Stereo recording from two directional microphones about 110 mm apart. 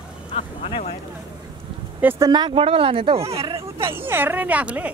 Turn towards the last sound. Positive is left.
turn(degrees=-10)  # may be behind; listen again after turning